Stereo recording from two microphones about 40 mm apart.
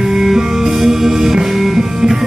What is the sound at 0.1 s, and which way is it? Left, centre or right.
Music, centre.